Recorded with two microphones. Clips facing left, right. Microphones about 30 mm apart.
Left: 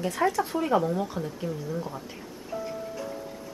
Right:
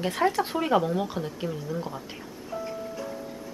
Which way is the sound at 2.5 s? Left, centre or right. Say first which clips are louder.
Even; centre.